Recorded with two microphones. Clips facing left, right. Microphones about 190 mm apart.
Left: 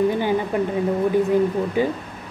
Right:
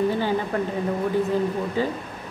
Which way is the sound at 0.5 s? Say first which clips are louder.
Left 3 dB; 15° left (ahead or behind).